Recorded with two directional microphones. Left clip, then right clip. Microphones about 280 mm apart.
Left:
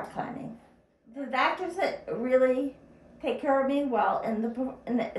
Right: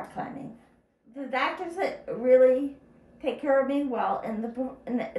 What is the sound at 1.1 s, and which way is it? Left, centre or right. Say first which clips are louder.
Speech: left 1 dB; centre.